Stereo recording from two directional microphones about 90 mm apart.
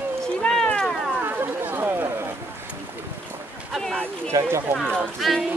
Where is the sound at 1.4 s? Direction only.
25° right (ahead or behind).